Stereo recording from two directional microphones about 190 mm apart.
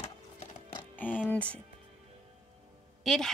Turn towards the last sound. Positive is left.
turn(degrees=0)  # may be behind; listen again after turning